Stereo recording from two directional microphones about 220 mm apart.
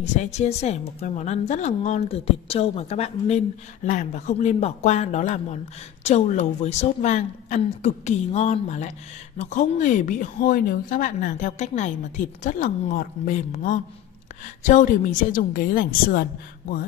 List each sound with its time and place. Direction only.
0.0 s a woman's voice: 30° left (ahead or behind)